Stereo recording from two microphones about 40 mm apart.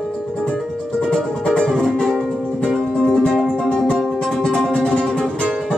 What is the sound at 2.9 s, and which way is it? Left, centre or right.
Music, centre.